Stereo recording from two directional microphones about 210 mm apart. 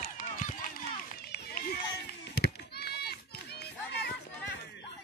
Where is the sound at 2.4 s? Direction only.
50° left (ahead or behind).